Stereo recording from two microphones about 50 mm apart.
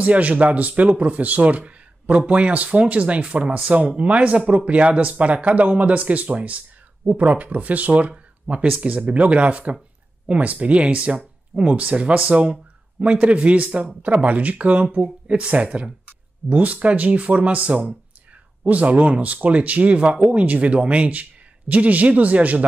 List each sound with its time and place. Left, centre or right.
0.0 s speech: right